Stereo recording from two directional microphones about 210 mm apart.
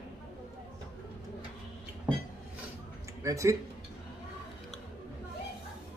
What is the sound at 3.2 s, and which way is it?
Speech, 15° right (ahead or behind).